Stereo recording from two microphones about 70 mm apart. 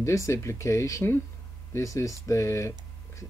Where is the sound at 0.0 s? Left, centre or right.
Left.